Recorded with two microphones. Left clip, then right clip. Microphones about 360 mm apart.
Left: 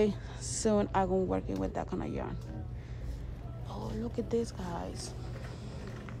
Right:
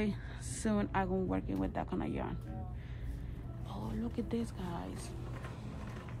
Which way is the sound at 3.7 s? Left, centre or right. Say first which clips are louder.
Left 3 dB; centre.